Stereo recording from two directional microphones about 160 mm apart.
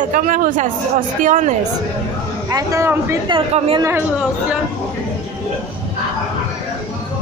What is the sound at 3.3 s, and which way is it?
Speech, 30° right (ahead or behind).